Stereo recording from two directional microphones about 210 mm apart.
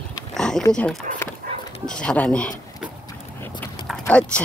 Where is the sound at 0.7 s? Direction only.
5° left (ahead or behind).